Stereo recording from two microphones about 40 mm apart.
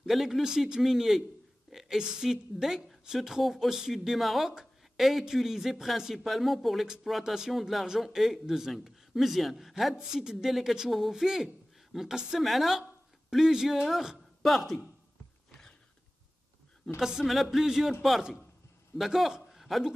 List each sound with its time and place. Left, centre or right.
0.0 s a man's voice: centre
1.7 s a sound: centre
2.0 s a man's voice: centre
7.8 s a man's voice: centre
9.9 s a man's voice: centre
13.5 s a man's voice: centre
14.4 s speech: centre
17.0 s a man's voice: centre
18.9 s a man's voice: centre